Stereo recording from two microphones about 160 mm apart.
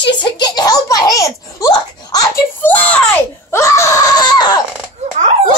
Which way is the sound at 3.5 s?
20° left (ahead or behind).